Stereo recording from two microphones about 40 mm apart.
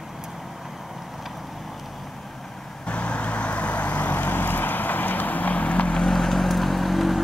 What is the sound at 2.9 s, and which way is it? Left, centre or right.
Vehicle, left.